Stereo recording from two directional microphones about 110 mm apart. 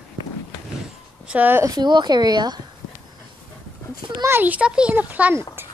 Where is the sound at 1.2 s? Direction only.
15° right (ahead or behind).